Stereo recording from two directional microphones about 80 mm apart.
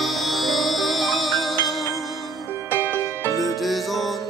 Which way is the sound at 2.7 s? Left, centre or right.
Left.